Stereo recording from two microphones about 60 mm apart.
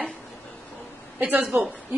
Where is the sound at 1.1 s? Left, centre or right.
Right.